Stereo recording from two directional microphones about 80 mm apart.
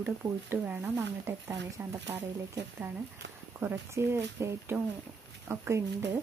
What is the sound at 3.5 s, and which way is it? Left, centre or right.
Speech, right.